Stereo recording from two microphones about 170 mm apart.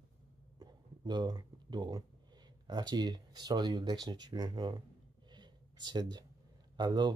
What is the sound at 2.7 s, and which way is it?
Speech, 25° right (ahead or behind).